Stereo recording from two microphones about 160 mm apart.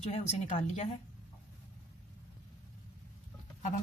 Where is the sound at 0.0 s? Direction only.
45° left (ahead or behind).